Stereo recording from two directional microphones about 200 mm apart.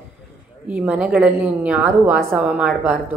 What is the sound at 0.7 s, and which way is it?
A woman's voice, 5° right (ahead or behind).